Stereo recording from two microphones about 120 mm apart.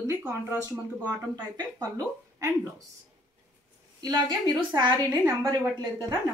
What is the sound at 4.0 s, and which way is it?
A woman's voice, 30° right (ahead or behind).